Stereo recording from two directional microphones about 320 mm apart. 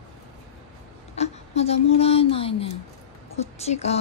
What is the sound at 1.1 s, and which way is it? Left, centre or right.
Speech, centre.